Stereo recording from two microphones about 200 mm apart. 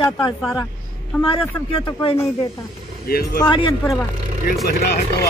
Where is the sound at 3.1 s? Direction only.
50° left (ahead or behind).